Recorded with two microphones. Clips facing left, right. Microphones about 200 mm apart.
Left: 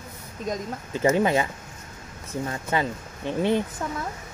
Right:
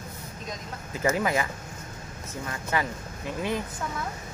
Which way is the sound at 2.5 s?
30° left (ahead or behind).